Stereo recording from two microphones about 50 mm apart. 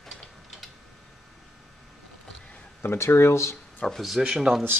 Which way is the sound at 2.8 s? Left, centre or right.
Left.